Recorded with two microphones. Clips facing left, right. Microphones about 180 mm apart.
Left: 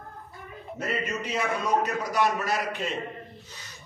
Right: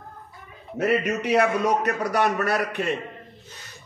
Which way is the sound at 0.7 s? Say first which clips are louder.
Right 8 dB; 70° right (ahead or behind).